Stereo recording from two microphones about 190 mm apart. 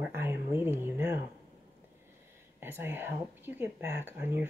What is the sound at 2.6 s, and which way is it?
Speech, 10° right (ahead or behind).